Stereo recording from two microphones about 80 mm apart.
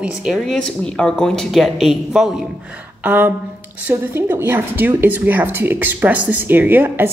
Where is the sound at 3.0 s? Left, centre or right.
Right.